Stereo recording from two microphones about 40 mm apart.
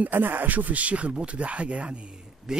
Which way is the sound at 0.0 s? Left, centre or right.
Right.